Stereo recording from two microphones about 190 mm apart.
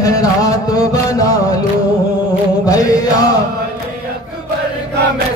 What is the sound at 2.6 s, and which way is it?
Chant, 20° left (ahead or behind).